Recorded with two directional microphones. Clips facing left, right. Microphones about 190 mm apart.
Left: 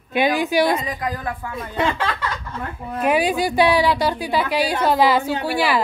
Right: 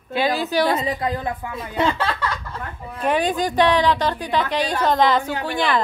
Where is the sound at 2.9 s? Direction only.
10° left (ahead or behind).